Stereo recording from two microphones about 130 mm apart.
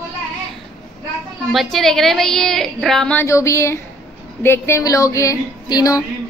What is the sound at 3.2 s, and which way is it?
Speech, 25° left (ahead or behind).